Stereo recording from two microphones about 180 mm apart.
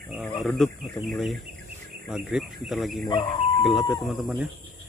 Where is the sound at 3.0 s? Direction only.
25° left (ahead or behind).